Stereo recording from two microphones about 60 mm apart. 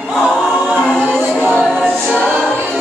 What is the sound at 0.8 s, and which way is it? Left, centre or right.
Choir, centre.